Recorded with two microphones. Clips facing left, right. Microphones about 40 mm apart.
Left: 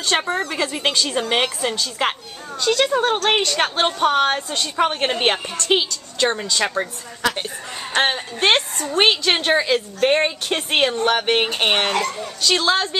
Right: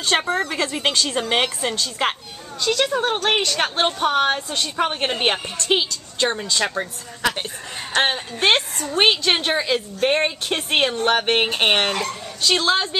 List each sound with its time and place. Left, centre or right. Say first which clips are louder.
0.0 s a woman's voice: even; centre
8.0 s a woman's voice: left 1 dB; centre
11.1 s a woman's voice: even; centre